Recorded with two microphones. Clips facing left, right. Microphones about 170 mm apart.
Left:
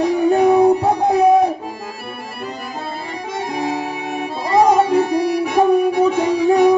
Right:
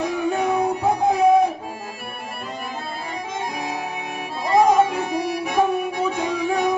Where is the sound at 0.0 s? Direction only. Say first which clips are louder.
Left 8 dB; 35° left (ahead or behind).